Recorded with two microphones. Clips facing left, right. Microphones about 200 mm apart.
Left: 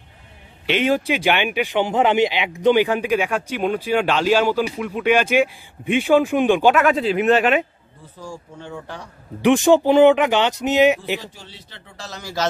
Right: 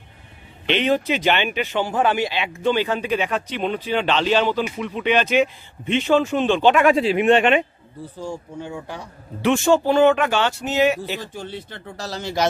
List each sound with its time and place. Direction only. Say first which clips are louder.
0.7 s a man's voice: left 1 dB; 10° left (ahead or behind)
8.5 s speech: right 2 dB; 10° right (ahead or behind)
9.4 s a man's voice: left 3 dB; 15° left (ahead or behind)
11.1 s speech: right 6 dB; 55° right (ahead or behind)
12.1 s a man's voice: right 6 dB; 25° right (ahead or behind)